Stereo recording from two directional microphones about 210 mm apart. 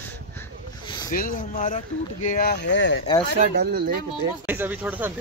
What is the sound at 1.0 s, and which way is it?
Speech, 40° left (ahead or behind).